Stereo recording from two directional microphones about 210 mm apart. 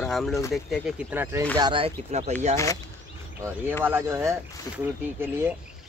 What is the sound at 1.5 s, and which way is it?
Speech, 25° right (ahead or behind).